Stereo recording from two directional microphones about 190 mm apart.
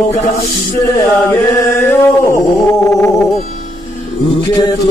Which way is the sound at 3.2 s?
Centre (ahead or behind).